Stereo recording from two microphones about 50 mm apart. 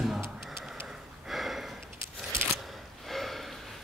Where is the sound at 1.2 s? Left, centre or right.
Centre.